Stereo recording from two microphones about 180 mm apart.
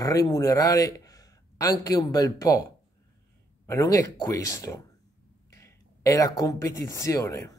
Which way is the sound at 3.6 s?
15° left (ahead or behind).